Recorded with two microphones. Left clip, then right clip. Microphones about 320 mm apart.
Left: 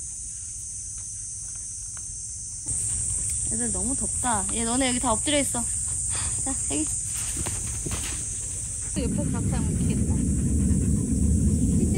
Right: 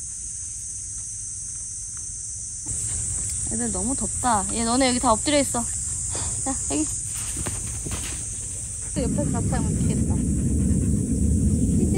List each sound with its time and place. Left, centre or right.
3.5 s speech: right
7.4 s clip-clop: centre
9.0 s speech: right
10.0 s dog: centre